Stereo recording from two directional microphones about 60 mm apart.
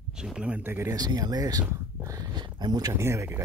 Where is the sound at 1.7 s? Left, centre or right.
Right.